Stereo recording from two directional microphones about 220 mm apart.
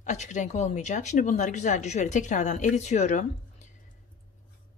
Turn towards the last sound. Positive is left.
turn(degrees=35)  # may be behind; listen again after turning